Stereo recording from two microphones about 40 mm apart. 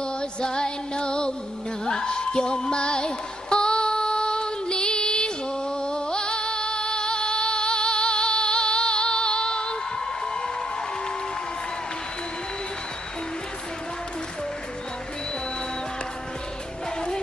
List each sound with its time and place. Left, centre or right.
0.0 s music: left
1.9 s female singing: left